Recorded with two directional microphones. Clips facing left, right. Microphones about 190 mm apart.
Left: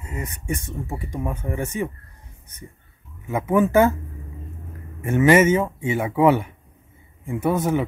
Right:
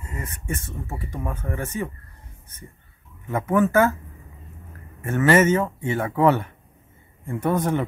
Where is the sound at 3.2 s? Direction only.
10° left (ahead or behind).